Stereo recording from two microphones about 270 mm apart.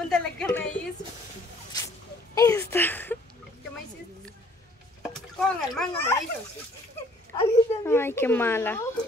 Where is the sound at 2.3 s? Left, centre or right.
Centre.